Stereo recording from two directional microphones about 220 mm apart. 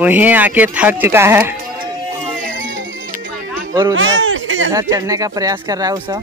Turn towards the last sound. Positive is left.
turn(degrees=-15)  # may be behind; listen again after turning